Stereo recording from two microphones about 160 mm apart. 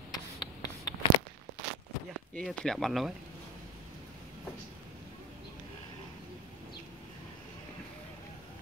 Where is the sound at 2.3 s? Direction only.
5° left (ahead or behind).